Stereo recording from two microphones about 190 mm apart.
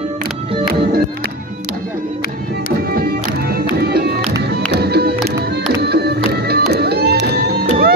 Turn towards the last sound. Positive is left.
turn(degrees=-55)  # may be behind; listen again after turning